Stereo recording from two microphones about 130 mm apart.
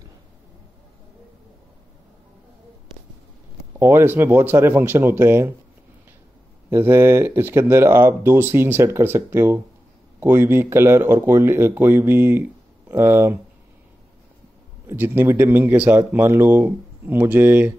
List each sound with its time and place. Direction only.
3.8 s speech: 20° right (ahead or behind)
6.7 s speech: 20° right (ahead or behind)
14.9 s speech: 15° right (ahead or behind)